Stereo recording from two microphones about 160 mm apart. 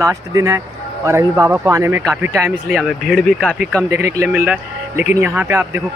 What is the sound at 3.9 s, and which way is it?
Speech, 15° right (ahead or behind).